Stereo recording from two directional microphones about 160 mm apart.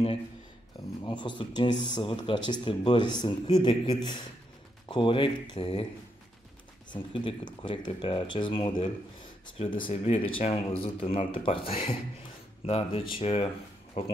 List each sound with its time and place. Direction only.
1.0 s speech: 30° left (ahead or behind)
6.9 s speech: 30° left (ahead or behind)